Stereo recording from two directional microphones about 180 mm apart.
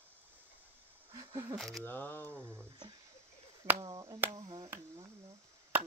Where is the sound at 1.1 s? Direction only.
15° right (ahead or behind).